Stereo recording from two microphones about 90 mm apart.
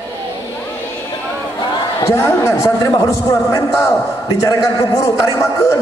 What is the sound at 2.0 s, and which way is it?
A man's voice, 30° left (ahead or behind).